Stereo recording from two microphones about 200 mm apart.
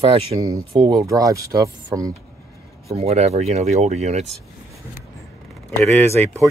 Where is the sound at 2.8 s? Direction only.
30° right (ahead or behind).